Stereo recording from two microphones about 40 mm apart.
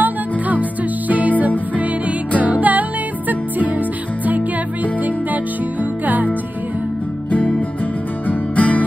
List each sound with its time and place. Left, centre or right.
0.0 s music: right
2.4 s music: right
6.0 s music: right
7.2 s music: left